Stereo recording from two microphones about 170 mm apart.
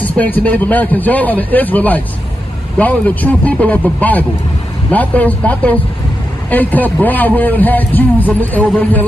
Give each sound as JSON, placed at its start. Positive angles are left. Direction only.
{"t": 0.0, "sound": "a man's voice", "side_deg": 10}